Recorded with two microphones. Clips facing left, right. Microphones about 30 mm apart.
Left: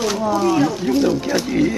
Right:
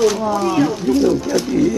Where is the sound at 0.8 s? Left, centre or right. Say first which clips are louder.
Right 2 dB; centre.